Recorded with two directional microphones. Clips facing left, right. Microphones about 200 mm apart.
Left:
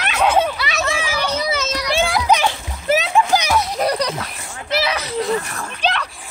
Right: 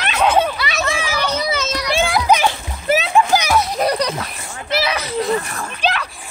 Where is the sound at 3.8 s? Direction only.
20° right (ahead or behind).